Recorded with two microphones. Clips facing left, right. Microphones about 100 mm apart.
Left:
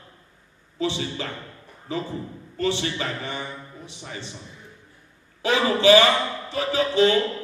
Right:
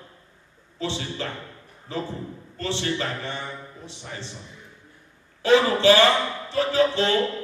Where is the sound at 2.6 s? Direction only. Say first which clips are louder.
Left 2 dB; 15° left (ahead or behind).